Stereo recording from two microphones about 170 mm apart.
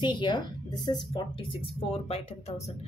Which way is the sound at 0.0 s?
25° left (ahead or behind).